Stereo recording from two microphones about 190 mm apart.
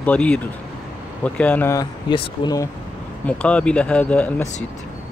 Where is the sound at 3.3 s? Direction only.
5° left (ahead or behind).